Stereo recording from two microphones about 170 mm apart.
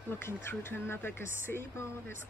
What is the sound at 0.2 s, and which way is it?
Speech, 15° left (ahead or behind).